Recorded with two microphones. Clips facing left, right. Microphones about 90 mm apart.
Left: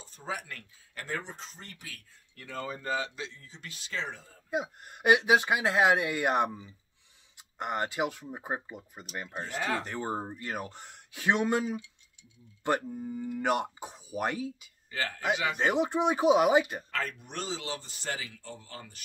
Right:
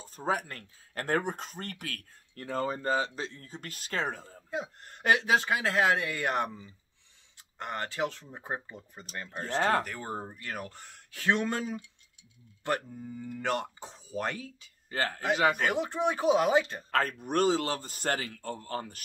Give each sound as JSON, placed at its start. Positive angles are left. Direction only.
{"t": 0.0, "sound": "a man's voice", "side_deg": -45}
{"t": 2.3, "sound": "speech", "side_deg": -40}
{"t": 3.3, "sound": "a man's voice", "side_deg": -50}
{"t": 4.5, "sound": "speech", "side_deg": 15}
{"t": 9.4, "sound": "a man's voice", "side_deg": -45}
{"t": 9.8, "sound": "speech", "side_deg": 25}
{"t": 14.9, "sound": "speech", "side_deg": -40}
{"t": 15.3, "sound": "a man's voice", "side_deg": -50}
{"t": 15.6, "sound": "speech", "side_deg": 20}
{"t": 16.9, "sound": "a man's voice", "side_deg": -45}